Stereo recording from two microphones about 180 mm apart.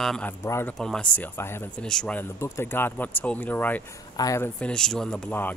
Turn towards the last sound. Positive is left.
turn(degrees=10)  # may be behind; listen again after turning